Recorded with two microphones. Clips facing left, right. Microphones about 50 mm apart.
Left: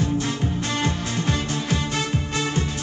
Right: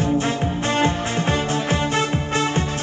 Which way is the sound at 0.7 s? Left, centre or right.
Right.